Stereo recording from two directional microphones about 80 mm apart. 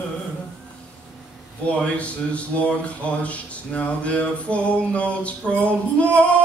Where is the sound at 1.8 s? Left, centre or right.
Centre.